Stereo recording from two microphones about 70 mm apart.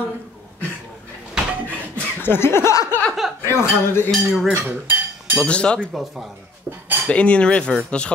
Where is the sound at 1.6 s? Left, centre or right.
Left.